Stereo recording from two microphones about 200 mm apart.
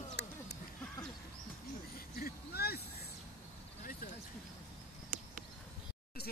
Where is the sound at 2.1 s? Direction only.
50° left (ahead or behind).